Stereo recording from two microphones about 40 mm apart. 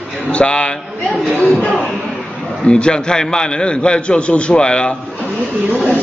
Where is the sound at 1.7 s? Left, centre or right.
Centre.